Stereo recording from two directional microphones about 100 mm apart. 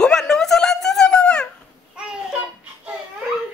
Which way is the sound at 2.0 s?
10° right (ahead or behind).